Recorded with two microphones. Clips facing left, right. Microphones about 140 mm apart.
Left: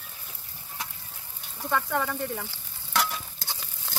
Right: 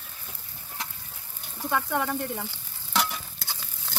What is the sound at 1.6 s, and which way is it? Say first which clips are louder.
Frying: even; 10° right (ahead or behind).